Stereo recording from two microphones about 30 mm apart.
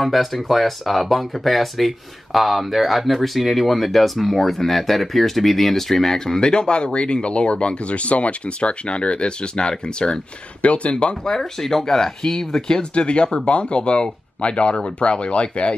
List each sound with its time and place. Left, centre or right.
0.0 s speech: centre
6.5 s speech: left
10.6 s speech: left
11.6 s speech: centre
12.6 s speech: left